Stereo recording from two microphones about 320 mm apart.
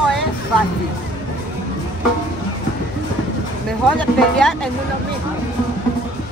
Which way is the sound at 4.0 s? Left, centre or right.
Centre.